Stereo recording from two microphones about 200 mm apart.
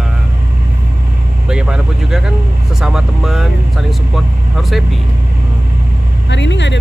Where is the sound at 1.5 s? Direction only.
5° right (ahead or behind).